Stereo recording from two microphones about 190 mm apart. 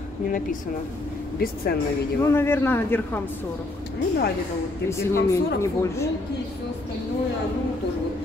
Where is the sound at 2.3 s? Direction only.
10° left (ahead or behind).